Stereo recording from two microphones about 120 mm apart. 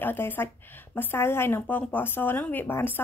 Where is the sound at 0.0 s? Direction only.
15° left (ahead or behind).